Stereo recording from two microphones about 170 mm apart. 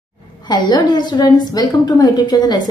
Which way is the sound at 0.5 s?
25° left (ahead or behind).